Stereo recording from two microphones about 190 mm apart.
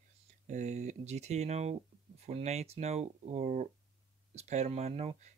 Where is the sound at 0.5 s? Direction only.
40° right (ahead or behind).